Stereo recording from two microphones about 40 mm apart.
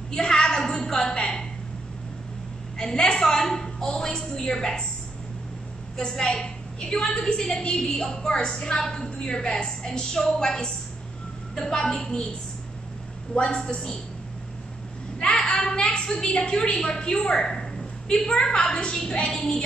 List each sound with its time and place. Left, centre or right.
0.1 s a sound: centre
2.8 s a woman's voice: centre
5.9 s a woman's voice: centre
9.8 s a woman's voice: centre
13.3 s a woman's voice: left
15.1 s a woman's voice: left